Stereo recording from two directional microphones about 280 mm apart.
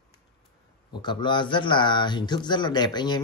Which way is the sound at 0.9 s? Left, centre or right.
Centre.